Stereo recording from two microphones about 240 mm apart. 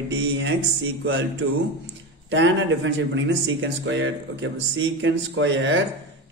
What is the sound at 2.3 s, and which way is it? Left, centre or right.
A man's voice, right.